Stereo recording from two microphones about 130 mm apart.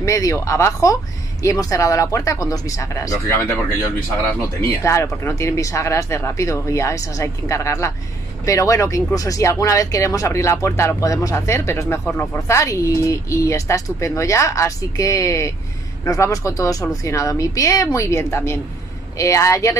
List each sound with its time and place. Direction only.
0.0 s speech: 25° left (ahead or behind)